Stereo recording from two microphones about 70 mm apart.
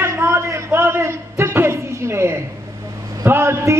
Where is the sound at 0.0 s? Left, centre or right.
Right.